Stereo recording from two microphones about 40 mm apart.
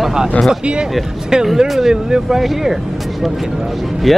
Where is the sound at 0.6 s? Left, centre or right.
Right.